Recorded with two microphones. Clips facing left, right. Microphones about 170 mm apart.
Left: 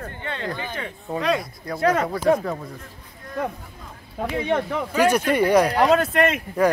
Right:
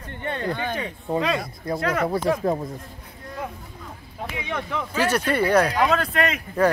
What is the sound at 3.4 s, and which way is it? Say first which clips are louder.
Speech: left 6 dB; 60° left (ahead or behind).